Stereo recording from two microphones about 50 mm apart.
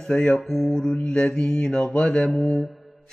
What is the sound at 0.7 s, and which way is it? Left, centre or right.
Mantra, centre.